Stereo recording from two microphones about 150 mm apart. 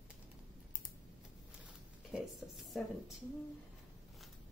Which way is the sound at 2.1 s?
Centre (ahead or behind).